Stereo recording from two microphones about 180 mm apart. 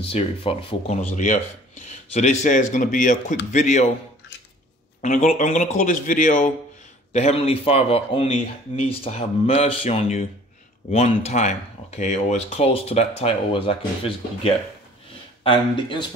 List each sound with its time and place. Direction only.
0.0 s a man's voice: 30° left (ahead or behind)
5.0 s a man's voice: 45° left (ahead or behind)
7.1 s speech: 35° left (ahead or behind)